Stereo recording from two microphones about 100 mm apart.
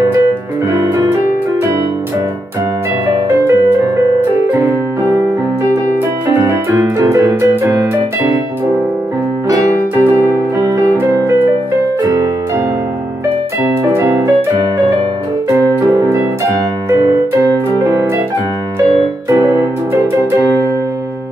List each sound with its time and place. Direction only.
4.6 s keyboard: 30° right (ahead or behind)
7.0 s music: 35° right (ahead or behind)
11.0 s music: 25° right (ahead or behind)
13.9 s music: 25° right (ahead or behind)
19.2 s music: 25° right (ahead or behind)